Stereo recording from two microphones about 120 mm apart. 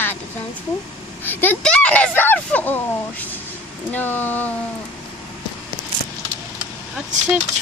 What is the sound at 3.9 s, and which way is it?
Speech, 15° left (ahead or behind).